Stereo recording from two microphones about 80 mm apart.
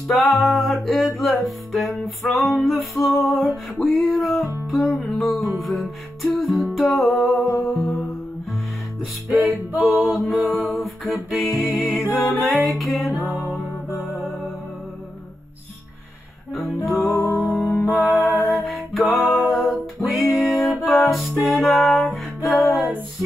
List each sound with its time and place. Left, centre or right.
0.1 s music: centre
9.3 s music: centre
10.6 s music: centre
12.1 s music: left
12.4 s music: centre
16.5 s music: centre